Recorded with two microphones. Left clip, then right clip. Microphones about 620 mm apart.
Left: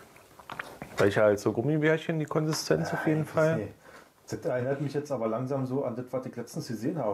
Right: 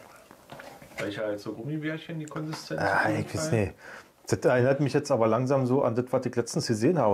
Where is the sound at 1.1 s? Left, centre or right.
Left.